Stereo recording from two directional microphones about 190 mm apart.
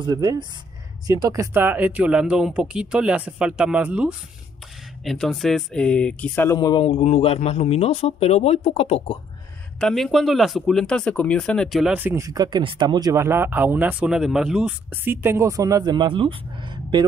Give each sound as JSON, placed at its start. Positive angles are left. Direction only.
{"t": 0.0, "sound": "speech", "side_deg": -20}
{"t": 9.8, "sound": "speech", "side_deg": 5}